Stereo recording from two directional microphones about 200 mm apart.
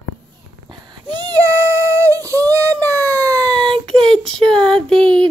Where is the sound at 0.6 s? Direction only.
20° right (ahead or behind).